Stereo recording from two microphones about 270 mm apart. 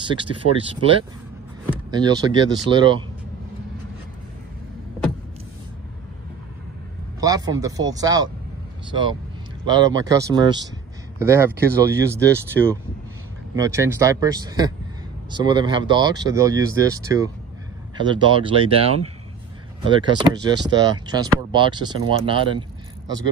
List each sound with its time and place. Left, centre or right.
0.0 s speech: centre
7.2 s speech: centre
9.7 s speech: centre